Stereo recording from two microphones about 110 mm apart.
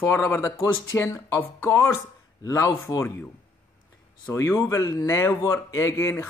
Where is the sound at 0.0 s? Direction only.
20° left (ahead or behind).